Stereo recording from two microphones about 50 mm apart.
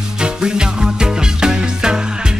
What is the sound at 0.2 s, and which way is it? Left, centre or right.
Music, centre.